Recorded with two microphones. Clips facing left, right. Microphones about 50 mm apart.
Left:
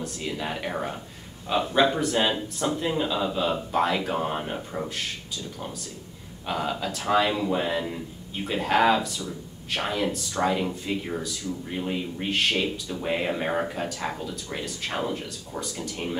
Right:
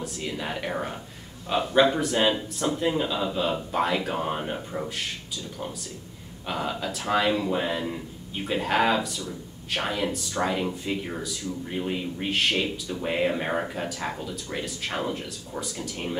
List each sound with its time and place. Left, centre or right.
0.0 s speech: centre
6.4 s speech: centre